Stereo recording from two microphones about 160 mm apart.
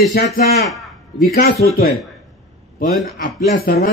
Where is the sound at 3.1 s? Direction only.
60° left (ahead or behind).